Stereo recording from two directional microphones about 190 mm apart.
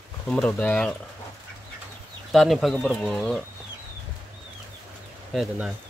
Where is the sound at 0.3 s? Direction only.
5° left (ahead or behind).